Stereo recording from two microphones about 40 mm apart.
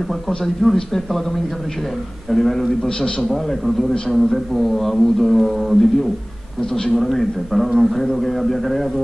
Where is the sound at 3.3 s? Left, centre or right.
Centre.